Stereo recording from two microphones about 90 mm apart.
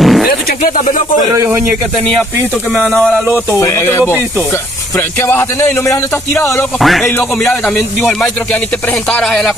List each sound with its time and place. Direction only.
0.0 s a sound: centre (ahead or behind)
1.3 s speech: 30° right (ahead or behind)
3.5 s speech: 30° left (ahead or behind)
6.8 s speech: centre (ahead or behind)